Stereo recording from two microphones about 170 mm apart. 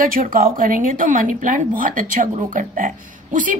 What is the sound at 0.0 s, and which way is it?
Speech, 55° right (ahead or behind).